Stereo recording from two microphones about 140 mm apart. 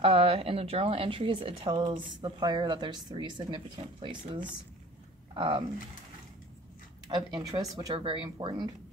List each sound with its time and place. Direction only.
0.0 s a woman's voice: 40° right (ahead or behind)
7.1 s a woman's voice: 35° right (ahead or behind)